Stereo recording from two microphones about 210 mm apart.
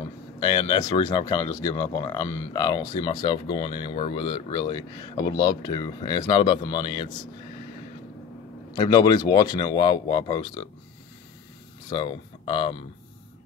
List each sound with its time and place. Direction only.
0.4 s speech: 20° left (ahead or behind)
8.7 s speech: 20° left (ahead or behind)
11.9 s speech: 20° left (ahead or behind)